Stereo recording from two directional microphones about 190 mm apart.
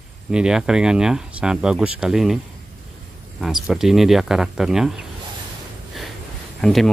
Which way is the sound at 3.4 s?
Centre (ahead or behind).